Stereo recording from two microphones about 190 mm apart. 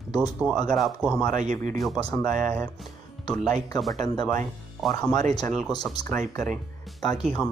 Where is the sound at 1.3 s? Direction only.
40° right (ahead or behind).